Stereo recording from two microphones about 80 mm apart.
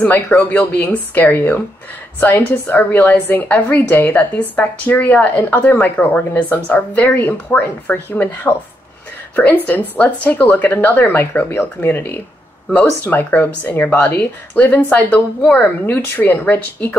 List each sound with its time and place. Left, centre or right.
0.0 s a woman's voice: left